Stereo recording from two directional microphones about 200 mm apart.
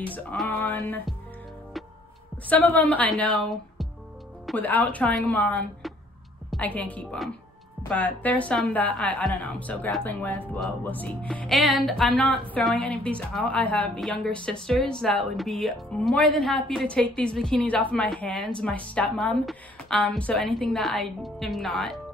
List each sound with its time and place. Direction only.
0.1 s a woman's voice: 5° left (ahead or behind)
2.5 s a woman's voice: 10° left (ahead or behind)